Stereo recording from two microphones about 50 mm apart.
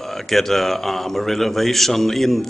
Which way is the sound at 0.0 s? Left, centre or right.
Centre.